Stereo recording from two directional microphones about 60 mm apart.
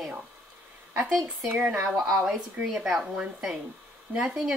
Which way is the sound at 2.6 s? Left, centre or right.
Centre.